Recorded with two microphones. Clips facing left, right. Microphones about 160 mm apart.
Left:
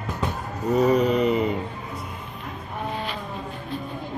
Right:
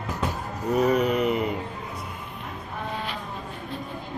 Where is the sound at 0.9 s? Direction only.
5° right (ahead or behind).